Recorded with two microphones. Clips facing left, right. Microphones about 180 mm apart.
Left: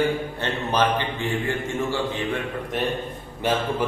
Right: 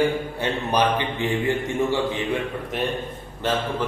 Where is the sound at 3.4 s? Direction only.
15° left (ahead or behind).